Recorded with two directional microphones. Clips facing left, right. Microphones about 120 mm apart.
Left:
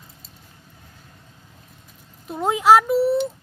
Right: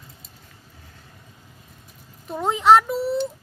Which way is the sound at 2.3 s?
5° left (ahead or behind).